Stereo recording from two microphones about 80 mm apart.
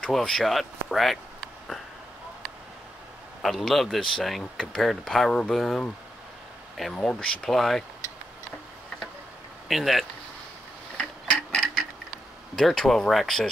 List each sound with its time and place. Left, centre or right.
0.0 s speech: centre
3.4 s speech: centre
9.7 s speech: centre
11.0 s a sound: centre
12.5 s speech: centre